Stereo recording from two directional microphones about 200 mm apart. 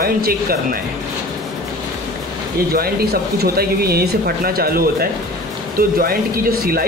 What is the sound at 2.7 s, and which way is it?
Speech, 50° right (ahead or behind).